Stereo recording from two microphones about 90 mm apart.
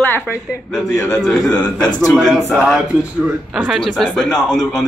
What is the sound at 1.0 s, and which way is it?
A man's voice, 10° left (ahead or behind).